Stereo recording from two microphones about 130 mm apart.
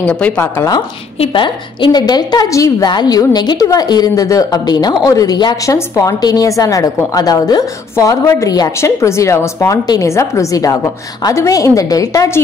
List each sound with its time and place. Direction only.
0.0 s speech: 10° left (ahead or behind)
1.2 s a woman's voice: 40° left (ahead or behind)